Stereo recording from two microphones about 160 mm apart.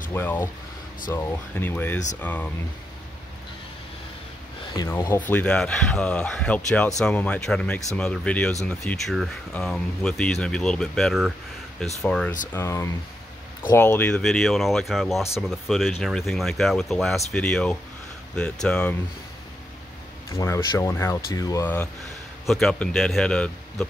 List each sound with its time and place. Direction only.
0.1 s speech: 15° left (ahead or behind)
4.7 s speech: 15° left (ahead or behind); by 11.3 s centre (ahead or behind)
12.5 s speech: 15° left (ahead or behind)
20.2 s speech: 20° left (ahead or behind)
22.5 s speech: 5° left (ahead or behind)